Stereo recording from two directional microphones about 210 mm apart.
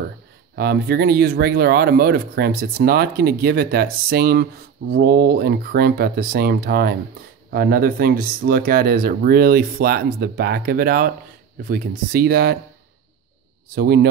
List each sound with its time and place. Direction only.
0.6 s speech: 45° right (ahead or behind)
13.7 s speech: 45° right (ahead or behind)